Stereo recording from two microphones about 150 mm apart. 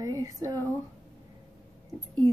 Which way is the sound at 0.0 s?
25° right (ahead or behind).